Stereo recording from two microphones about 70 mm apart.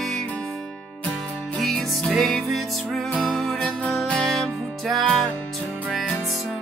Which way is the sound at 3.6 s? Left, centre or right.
Centre.